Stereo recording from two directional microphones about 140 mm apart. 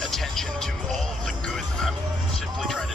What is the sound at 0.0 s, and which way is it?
Music, centre (ahead or behind).